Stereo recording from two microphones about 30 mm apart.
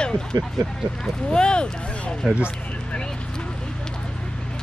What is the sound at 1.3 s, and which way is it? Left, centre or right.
Speech, left.